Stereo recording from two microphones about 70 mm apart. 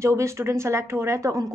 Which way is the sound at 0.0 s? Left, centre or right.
Right.